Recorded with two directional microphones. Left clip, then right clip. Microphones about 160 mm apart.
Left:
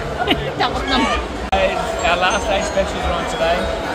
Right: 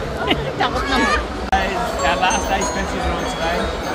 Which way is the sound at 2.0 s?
50° left (ahead or behind).